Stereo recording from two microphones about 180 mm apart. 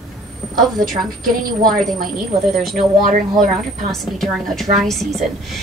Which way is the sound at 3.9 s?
Centre (ahead or behind).